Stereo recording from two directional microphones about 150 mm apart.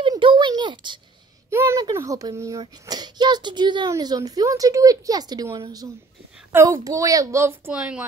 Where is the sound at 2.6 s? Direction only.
30° right (ahead or behind).